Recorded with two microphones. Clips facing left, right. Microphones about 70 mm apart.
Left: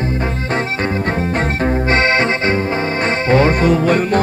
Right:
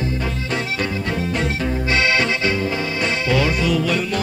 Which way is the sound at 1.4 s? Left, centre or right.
Left.